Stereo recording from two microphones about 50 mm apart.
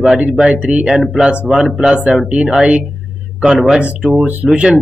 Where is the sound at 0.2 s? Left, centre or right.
Right.